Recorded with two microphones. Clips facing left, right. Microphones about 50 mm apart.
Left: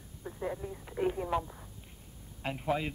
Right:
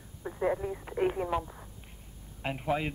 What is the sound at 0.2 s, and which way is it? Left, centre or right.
Telephone, right.